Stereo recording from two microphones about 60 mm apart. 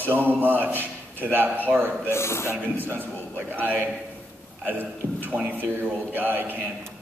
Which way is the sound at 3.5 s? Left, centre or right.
Right.